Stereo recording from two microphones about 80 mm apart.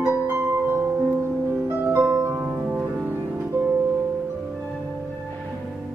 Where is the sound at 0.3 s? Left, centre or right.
Right.